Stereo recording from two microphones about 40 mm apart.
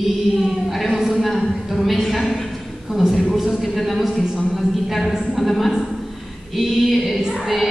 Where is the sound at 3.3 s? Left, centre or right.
Centre.